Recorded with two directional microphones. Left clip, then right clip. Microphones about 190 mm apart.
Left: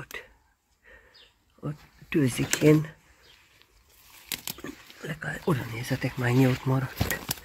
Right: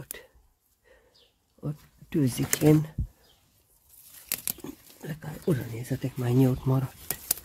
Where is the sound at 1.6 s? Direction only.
20° right (ahead or behind).